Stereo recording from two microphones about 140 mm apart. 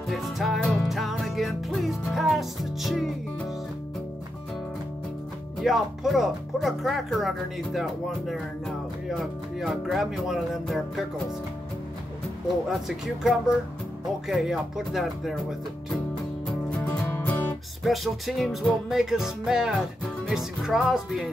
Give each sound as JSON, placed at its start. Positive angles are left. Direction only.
{"t": 0.1, "sound": "music", "side_deg": 0}
{"t": 5.6, "sound": "speech", "side_deg": 0}
{"t": 12.6, "sound": "speech", "side_deg": 0}
{"t": 17.0, "sound": "music", "side_deg": 15}
{"t": 17.8, "sound": "speech", "side_deg": 0}